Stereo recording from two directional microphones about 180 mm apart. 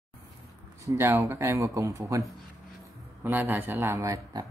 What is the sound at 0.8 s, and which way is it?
Speech, 15° right (ahead or behind).